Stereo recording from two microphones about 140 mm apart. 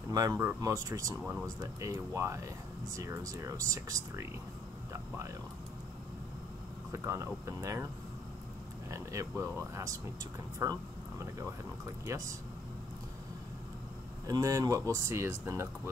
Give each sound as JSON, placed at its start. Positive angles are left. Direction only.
{"t": 0.1, "sound": "speech", "side_deg": -25}
{"t": 4.9, "sound": "a sound", "side_deg": -20}
{"t": 6.9, "sound": "speech", "side_deg": -20}
{"t": 8.9, "sound": "speech", "side_deg": -20}
{"t": 14.2, "sound": "speech", "side_deg": -25}